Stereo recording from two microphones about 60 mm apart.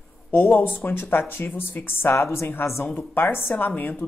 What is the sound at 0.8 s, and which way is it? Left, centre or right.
Speech, left.